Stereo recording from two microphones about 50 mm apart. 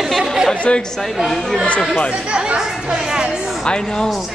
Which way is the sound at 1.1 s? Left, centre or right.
Centre.